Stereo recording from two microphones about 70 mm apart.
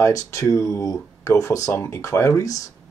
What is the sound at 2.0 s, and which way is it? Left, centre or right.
Speech, left.